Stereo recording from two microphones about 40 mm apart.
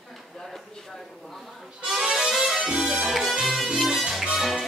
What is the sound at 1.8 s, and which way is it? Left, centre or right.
Music, centre.